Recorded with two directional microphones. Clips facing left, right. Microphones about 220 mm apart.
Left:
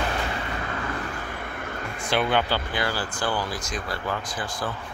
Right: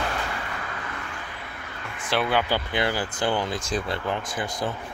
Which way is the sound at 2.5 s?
20° right (ahead or behind).